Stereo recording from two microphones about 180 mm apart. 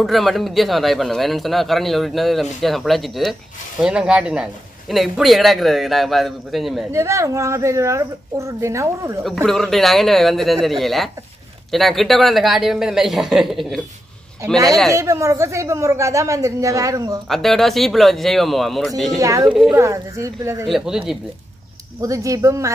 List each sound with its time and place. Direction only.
0.0 s speech: centre (ahead or behind)
6.9 s speech: 15° right (ahead or behind)
9.5 s speech: centre (ahead or behind)
14.9 s speech: 15° right (ahead or behind)
17.3 s speech: centre (ahead or behind)
19.1 s a woman's voice: 20° right (ahead or behind)
20.6 s speech: centre (ahead or behind)
22.0 s speech: 15° right (ahead or behind)